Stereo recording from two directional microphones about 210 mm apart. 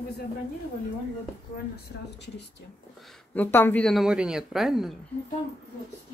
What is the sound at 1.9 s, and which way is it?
Speech, 45° left (ahead or behind).